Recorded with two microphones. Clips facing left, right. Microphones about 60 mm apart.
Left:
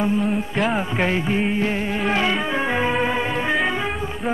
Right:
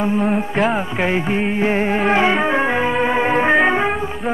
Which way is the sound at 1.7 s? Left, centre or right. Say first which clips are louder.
Right 6 dB; right.